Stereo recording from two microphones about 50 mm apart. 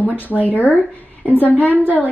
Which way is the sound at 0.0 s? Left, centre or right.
Left.